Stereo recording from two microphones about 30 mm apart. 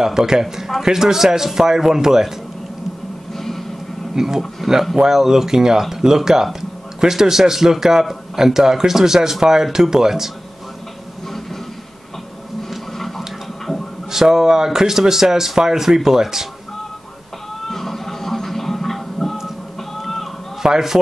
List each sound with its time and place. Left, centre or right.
0.0 s a man's voice: centre
3.3 s a sound: centre
4.1 s a man's voice: centre
14.1 s a man's voice: centre
17.6 s music: centre
20.6 s a man's voice: centre